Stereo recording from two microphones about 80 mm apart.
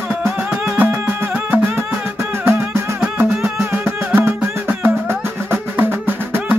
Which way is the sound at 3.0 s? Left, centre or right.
Centre.